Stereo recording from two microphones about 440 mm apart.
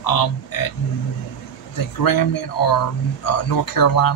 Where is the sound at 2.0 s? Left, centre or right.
Left.